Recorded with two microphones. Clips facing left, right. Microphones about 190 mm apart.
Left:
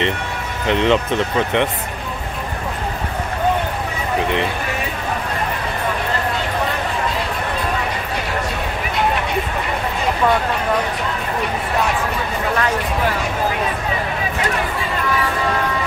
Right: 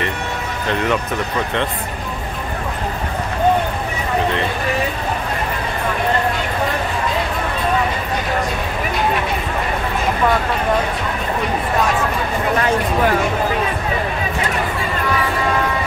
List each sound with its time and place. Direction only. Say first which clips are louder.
0.7 s speech: left 4 dB; 20° left (ahead or behind)